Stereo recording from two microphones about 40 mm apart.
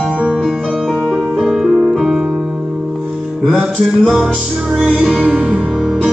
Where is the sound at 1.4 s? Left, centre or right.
Centre.